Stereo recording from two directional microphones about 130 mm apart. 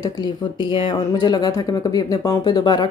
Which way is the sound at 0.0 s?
35° left (ahead or behind).